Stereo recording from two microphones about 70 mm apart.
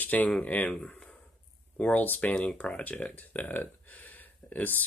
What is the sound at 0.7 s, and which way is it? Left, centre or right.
Speech, centre.